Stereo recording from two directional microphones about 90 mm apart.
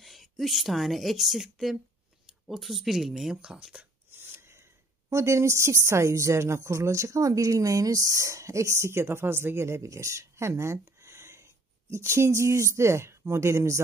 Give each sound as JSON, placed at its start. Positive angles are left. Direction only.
{"t": 0.0, "sound": "speech", "side_deg": 0}
{"t": 4.1, "sound": "speech", "side_deg": -25}